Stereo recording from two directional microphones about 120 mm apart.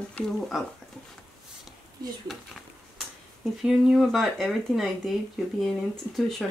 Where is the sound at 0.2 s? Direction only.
10° left (ahead or behind).